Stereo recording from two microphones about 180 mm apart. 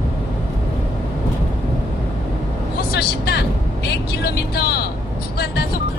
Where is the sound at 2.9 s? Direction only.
60° left (ahead or behind).